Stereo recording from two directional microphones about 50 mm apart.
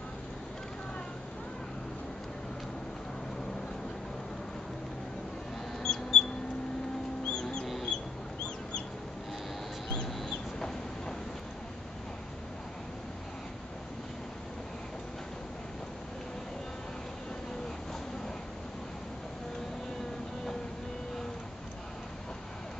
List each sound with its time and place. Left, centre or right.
5.8 s squeak: centre
7.2 s music: centre
7.6 s music: centre
9.8 s chicken: centre